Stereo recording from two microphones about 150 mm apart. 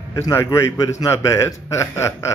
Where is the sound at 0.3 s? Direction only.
20° left (ahead or behind).